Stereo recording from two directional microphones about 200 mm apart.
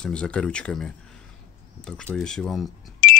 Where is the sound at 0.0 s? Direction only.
5° left (ahead or behind).